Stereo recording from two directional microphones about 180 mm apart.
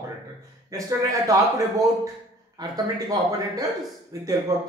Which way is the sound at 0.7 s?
20° right (ahead or behind).